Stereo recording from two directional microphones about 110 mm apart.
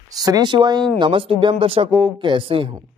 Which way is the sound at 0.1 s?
35° right (ahead or behind).